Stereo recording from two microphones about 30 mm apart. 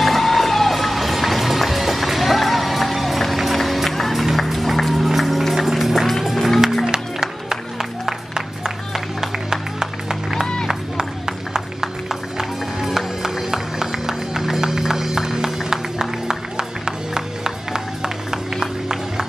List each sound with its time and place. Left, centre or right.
0.0 s music: centre
6.9 s music: right
8.9 s music: centre